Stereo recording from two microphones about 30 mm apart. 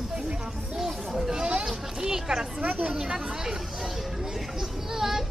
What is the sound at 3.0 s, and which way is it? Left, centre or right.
Speech, centre.